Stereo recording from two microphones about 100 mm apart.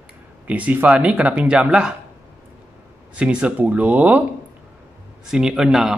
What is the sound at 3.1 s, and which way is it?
Speech, 10° right (ahead or behind).